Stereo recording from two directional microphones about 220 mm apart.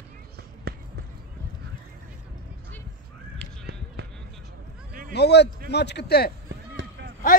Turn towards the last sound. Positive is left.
turn(degrees=-50)  # may be behind; listen again after turning